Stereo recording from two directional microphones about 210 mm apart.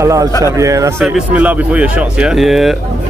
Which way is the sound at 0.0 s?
15° right (ahead or behind).